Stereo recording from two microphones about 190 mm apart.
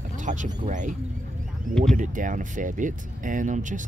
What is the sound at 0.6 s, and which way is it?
Speech, 40° right (ahead or behind).